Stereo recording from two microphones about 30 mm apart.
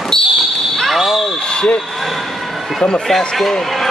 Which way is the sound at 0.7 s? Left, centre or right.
Centre.